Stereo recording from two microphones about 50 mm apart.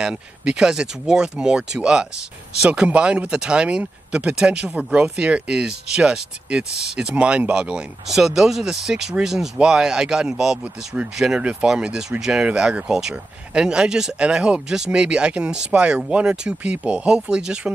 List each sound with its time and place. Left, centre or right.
0.0 s speech: centre
8.1 s speech: centre
13.1 s speech: right